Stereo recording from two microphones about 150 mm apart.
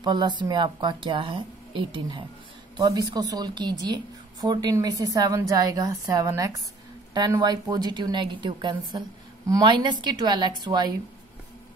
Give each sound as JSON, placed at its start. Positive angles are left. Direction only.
{"t": 0.0, "sound": "a woman's voice", "side_deg": -30}